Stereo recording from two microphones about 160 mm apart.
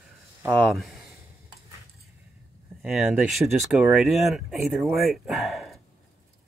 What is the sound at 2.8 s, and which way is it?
Speech, 5° right (ahead or behind).